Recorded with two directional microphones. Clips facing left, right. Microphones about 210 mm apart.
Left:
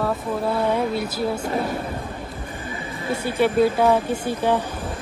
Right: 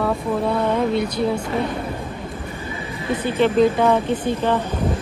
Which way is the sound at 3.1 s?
10° left (ahead or behind).